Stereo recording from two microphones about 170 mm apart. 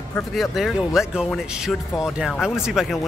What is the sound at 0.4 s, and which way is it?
Speech, centre (ahead or behind).